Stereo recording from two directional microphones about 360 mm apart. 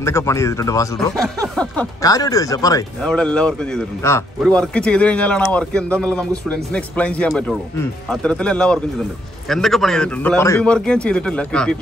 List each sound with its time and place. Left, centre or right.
0.0 s speech: centre